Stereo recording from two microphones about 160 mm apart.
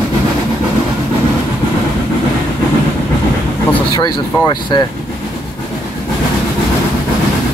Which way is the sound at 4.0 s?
25° left (ahead or behind).